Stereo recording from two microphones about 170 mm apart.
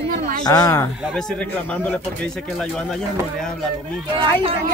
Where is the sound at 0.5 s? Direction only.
20° left (ahead or behind).